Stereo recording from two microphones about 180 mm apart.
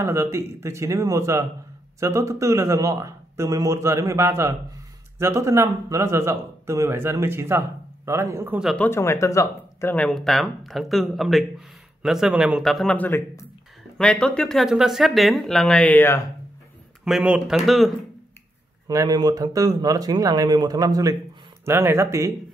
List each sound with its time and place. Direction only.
0.0 s a man's voice: 15° right (ahead or behind)
8.5 s speech: centre (ahead or behind)
8.8 s speech: 15° left (ahead or behind)
17.0 s speech: 5° right (ahead or behind)
18.9 s a man's voice: 20° right (ahead or behind)